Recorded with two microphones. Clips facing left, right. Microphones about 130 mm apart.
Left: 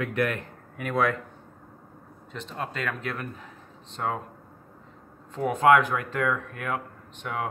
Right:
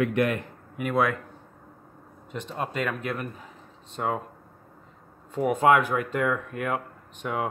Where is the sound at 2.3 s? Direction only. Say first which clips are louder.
Right 3 dB; 15° right (ahead or behind).